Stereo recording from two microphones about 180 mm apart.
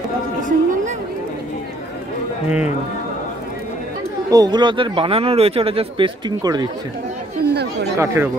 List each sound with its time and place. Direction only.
0.5 s music: 45° right (ahead or behind)
4.3 s speech: 20° right (ahead or behind)
8.0 s speech: 15° right (ahead or behind)